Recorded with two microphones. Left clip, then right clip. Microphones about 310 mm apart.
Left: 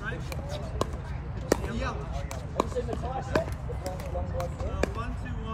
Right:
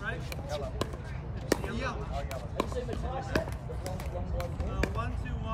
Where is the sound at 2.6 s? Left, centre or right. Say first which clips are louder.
Left 5 dB; centre.